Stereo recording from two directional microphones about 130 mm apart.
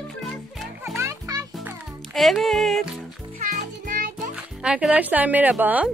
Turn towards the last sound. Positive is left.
turn(degrees=-10)  # may be behind; listen again after turning